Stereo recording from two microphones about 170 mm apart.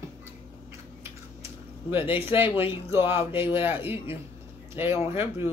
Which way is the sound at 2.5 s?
15° right (ahead or behind).